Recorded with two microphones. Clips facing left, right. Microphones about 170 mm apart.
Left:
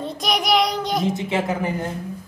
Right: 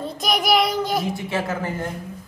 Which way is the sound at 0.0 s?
Centre (ahead or behind).